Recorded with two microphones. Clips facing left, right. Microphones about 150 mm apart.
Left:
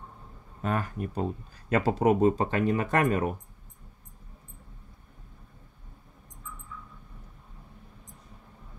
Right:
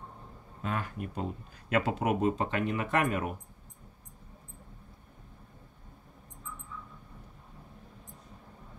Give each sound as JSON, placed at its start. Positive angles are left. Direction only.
{"t": 0.6, "sound": "speech", "side_deg": 45}